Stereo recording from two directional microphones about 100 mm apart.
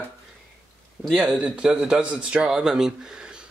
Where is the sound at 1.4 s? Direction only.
10° right (ahead or behind).